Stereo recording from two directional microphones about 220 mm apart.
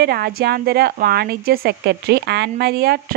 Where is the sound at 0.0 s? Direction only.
45° right (ahead or behind).